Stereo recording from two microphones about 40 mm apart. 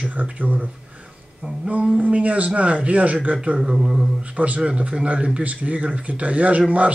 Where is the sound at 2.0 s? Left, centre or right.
Right.